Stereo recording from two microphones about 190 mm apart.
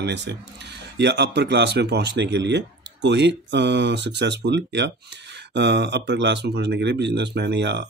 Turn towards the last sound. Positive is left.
turn(degrees=-65)  # may be behind; listen again after turning